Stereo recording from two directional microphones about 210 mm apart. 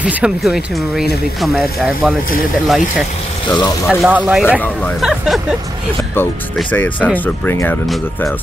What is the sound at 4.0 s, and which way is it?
Speech, 5° right (ahead or behind).